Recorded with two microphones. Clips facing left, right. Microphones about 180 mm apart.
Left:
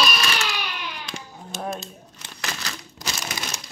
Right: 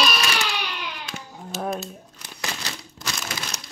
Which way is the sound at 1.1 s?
Centre (ahead or behind).